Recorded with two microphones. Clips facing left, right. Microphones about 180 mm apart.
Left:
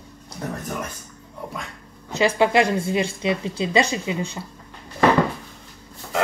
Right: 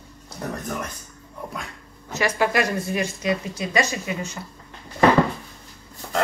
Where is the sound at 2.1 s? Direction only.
25° left (ahead or behind).